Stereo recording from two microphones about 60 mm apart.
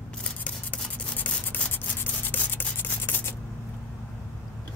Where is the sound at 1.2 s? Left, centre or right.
Left.